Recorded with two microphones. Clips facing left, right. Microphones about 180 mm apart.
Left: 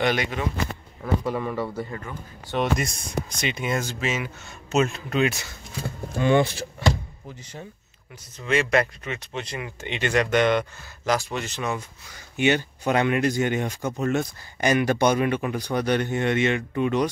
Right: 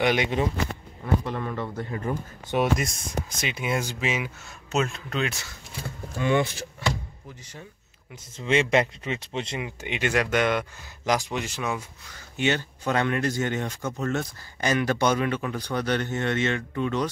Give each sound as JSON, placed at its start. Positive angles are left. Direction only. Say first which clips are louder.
{"t": 0.0, "sound": "speech", "louder": "even", "side_deg": -15}
{"t": 1.2, "sound": "speech", "louder": "left 4 dB", "side_deg": 5}
{"t": 2.1, "sound": "speech", "louder": "right 8 dB", "side_deg": -40}
{"t": 2.5, "sound": "speech", "louder": "right 1 dB", "side_deg": -5}
{"t": 4.6, "sound": "speech", "louder": "left 4 dB", "side_deg": 0}
{"t": 6.1, "sound": "speech", "louder": "left 4 dB", "side_deg": 30}
{"t": 8.4, "sound": "speech", "louder": "even", "side_deg": -25}
{"t": 9.8, "sound": "speech", "louder": "left 2 dB", "side_deg": -10}
{"t": 11.1, "sound": "speech", "louder": "left 1 dB", "side_deg": -15}
{"t": 12.1, "sound": "speech", "louder": "left 4 dB", "side_deg": 15}